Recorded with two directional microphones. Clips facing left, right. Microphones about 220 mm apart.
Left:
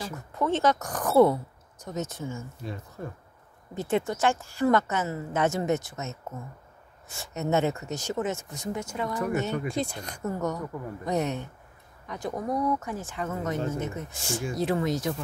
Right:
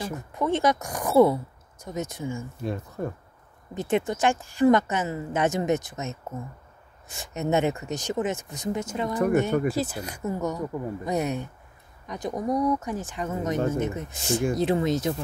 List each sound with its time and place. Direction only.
0.0 s a woman's voice: 15° right (ahead or behind)
3.7 s a woman's voice: 15° right (ahead or behind)
9.2 s speech: 50° right (ahead or behind)
9.7 s a woman's voice: 5° right (ahead or behind); by 15.2 s 25° right (ahead or behind)